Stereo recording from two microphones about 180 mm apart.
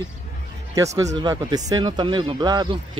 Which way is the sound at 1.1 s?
20° right (ahead or behind).